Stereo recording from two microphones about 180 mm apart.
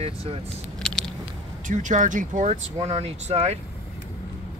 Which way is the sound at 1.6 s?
45° right (ahead or behind).